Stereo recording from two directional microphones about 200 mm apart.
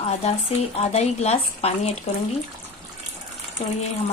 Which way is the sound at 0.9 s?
30° left (ahead or behind).